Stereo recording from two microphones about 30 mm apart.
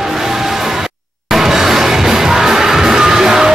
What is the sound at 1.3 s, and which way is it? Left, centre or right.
Music, centre.